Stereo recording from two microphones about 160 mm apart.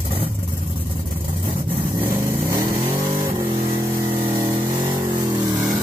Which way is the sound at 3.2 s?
20° right (ahead or behind).